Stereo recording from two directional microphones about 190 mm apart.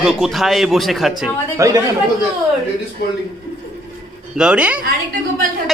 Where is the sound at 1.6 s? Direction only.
15° right (ahead or behind).